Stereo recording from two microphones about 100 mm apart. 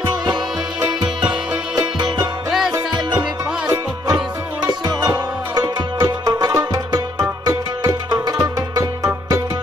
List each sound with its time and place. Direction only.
0.3 s music: 45° right (ahead or behind)